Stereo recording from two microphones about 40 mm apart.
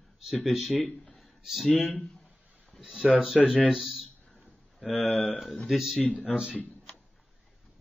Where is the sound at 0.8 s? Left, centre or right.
Left.